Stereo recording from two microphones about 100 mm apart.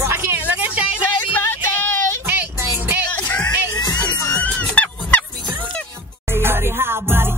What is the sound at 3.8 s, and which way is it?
Music, 35° left (ahead or behind).